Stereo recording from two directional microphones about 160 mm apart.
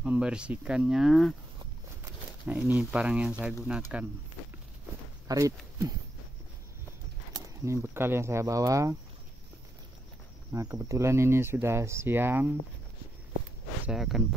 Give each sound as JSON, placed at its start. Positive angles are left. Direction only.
{"t": 0.0, "sound": "speech", "side_deg": -5}
{"t": 2.4, "sound": "speech", "side_deg": -10}
{"t": 5.3, "sound": "speech", "side_deg": -20}
{"t": 7.6, "sound": "speech", "side_deg": -15}
{"t": 10.5, "sound": "speech", "side_deg": -20}
{"t": 13.8, "sound": "speech", "side_deg": 0}